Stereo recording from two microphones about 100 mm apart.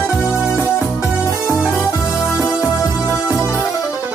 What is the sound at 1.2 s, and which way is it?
Music, 30° left (ahead or behind).